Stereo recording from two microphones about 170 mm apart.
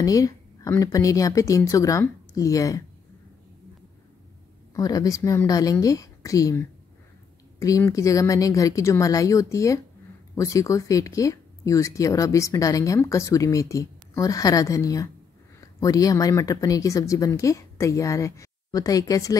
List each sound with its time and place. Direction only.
0.0 s speech: 20° left (ahead or behind)
4.7 s speech: 20° left (ahead or behind)
7.6 s speech: 20° left (ahead or behind)